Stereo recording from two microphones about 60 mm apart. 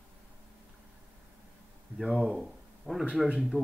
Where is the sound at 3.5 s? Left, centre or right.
Centre.